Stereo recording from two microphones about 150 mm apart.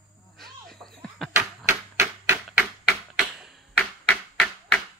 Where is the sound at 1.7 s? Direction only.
15° right (ahead or behind).